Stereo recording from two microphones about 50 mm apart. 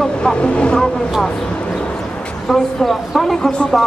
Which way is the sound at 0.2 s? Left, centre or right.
Centre.